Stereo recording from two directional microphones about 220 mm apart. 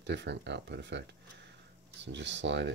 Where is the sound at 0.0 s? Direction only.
50° right (ahead or behind).